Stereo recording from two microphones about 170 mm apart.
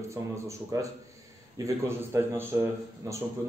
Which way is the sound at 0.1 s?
15° right (ahead or behind).